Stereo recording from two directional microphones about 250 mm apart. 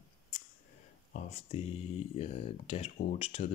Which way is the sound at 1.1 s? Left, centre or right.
Left.